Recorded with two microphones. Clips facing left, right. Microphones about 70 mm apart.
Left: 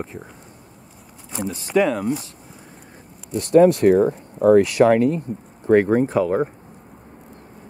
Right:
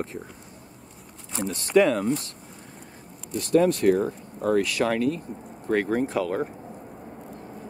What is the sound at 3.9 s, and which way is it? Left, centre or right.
Speech, centre.